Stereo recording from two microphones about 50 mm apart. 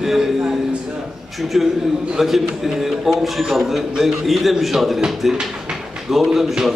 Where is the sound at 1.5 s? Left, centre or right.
Centre.